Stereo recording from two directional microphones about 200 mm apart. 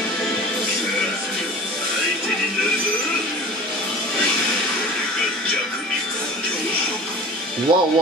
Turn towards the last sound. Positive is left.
turn(degrees=-25)  # may be behind; listen again after turning